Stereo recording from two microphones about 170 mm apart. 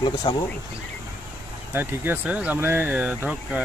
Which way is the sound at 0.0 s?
30° left (ahead or behind).